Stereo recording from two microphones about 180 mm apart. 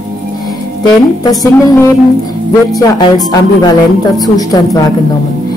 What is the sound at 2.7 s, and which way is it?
A woman's voice, 20° left (ahead or behind).